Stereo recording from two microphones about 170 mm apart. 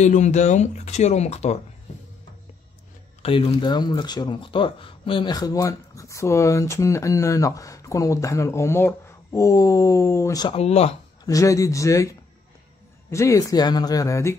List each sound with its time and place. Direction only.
0.0 s speech: 45° left (ahead or behind)
3.2 s speech: 30° left (ahead or behind)
10.5 s speech: 40° left (ahead or behind)
11.2 s speech: 20° left (ahead or behind)